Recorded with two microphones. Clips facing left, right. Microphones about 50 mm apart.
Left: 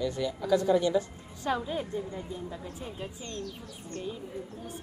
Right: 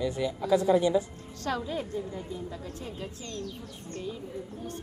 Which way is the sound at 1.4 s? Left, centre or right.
Centre.